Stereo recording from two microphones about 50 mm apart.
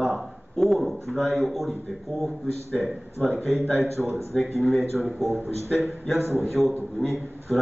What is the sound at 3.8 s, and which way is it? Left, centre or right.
Speech, right.